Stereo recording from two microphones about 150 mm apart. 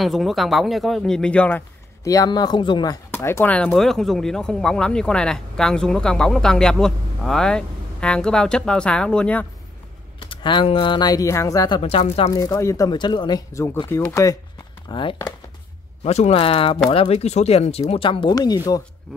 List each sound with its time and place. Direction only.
0.0 s speech: centre (ahead or behind)
2.0 s speech: 25° left (ahead or behind)
3.1 s speech: 15° left (ahead or behind)
10.3 s speech: 35° left (ahead or behind)
11.8 s speech: 40° left (ahead or behind)
12.3 s speech: 25° left (ahead or behind)
14.9 s speech: 30° left (ahead or behind)
16.0 s speech: 45° left (ahead or behind)
18.3 s speech: 25° left (ahead or behind)